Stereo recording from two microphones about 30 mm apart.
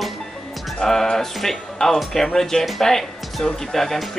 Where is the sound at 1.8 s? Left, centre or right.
Left.